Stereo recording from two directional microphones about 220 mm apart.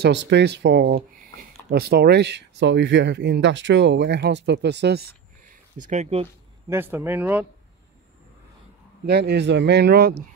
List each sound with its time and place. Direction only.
0.0 s speech: 50° right (ahead or behind)
5.8 s speech: 35° right (ahead or behind)
6.7 s speech: 10° right (ahead or behind)
9.0 s speech: 50° right (ahead or behind)